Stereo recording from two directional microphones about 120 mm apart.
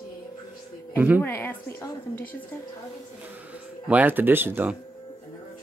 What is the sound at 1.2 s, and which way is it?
Speech, 20° left (ahead or behind).